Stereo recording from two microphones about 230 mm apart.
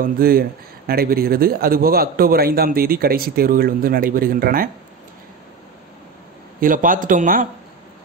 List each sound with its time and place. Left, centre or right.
0.0 s speech: right
6.6 s speech: right